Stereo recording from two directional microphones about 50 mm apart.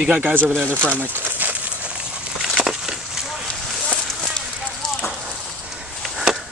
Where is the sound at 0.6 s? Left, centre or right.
Right.